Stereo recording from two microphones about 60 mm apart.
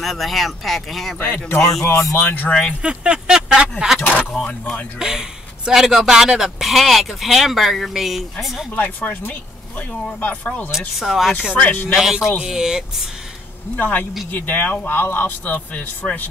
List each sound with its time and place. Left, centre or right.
0.0 s speech: centre
1.2 s a man's voice: left
1.6 s speech: centre
1.9 s speech: left
2.1 s a man's voice: left
2.8 s a sound: centre
4.0 s a sound: left
4.3 s speech: centre
4.9 s speech: centre
8.7 s speech: left
11.0 s speech: centre
11.5 s speech: left
11.9 s speech: centre
13.7 s a man's voice: left